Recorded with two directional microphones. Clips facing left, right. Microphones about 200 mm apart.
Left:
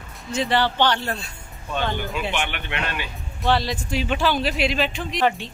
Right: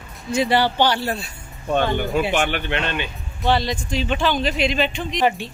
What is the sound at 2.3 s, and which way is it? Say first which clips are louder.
Speech: right 6 dB; 45° right (ahead or behind).